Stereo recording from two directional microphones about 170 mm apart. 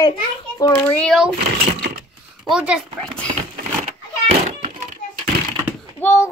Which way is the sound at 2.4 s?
5° right (ahead or behind).